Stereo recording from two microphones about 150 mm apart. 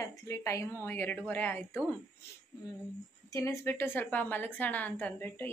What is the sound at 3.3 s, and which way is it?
A woman's voice, 20° left (ahead or behind).